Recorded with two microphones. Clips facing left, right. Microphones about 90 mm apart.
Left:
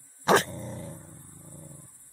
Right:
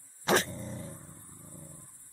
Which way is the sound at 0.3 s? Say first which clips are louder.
Left 5 dB; centre (ahead or behind).